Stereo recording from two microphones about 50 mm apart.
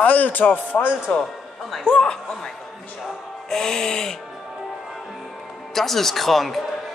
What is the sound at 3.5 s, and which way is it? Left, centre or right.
Music, centre.